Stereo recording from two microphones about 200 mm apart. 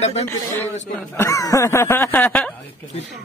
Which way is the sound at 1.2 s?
15° left (ahead or behind).